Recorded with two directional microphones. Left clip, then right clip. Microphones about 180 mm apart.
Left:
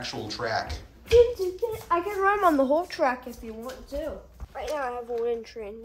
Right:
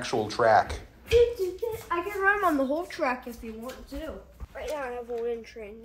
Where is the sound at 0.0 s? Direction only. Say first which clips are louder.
Right 7 dB; 5° left (ahead or behind).